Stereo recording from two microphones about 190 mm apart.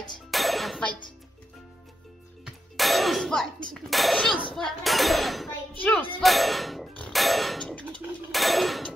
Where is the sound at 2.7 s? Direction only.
Centre (ahead or behind).